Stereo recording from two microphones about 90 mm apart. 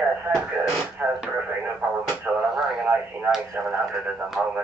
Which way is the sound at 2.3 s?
15° right (ahead or behind).